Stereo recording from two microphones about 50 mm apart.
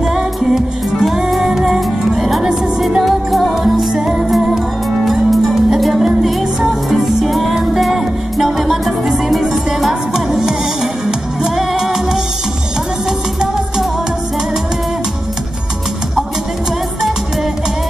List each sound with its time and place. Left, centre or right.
0.0 s music: centre